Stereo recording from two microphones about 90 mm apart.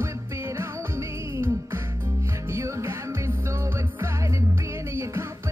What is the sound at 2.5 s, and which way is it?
Music, 30° right (ahead or behind).